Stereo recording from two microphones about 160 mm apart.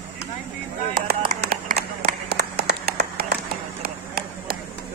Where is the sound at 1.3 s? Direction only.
80° right.